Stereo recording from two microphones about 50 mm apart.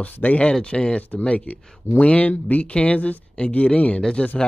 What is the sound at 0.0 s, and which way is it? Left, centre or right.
Speech, left.